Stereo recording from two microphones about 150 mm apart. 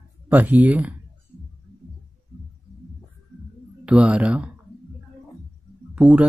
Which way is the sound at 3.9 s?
10° right (ahead or behind).